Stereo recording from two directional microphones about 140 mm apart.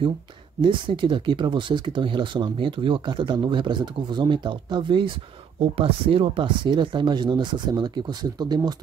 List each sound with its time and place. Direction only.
0.6 s speech: 35° right (ahead or behind)